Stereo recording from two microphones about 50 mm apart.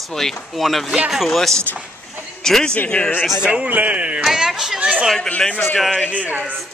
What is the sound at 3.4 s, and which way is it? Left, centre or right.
Speech, right.